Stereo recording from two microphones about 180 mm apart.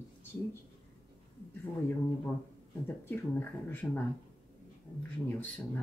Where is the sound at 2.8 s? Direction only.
10° left (ahead or behind).